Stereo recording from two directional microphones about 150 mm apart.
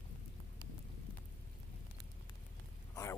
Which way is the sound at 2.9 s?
20° left (ahead or behind).